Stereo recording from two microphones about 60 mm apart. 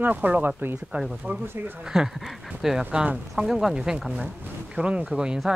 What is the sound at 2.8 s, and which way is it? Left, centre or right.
Speech, right.